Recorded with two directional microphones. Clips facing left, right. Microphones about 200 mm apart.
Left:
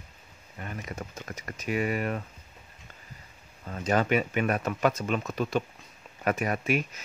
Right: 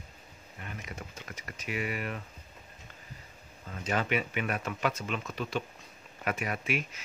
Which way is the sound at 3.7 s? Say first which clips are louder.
Left 6 dB; 40° left (ahead or behind).